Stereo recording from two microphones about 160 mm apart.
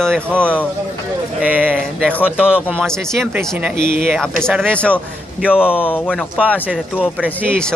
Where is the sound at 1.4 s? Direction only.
10° right (ahead or behind).